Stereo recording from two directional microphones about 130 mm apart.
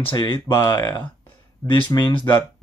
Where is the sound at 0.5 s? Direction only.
30° left (ahead or behind).